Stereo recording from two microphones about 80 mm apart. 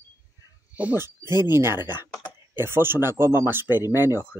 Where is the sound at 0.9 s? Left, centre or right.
Right.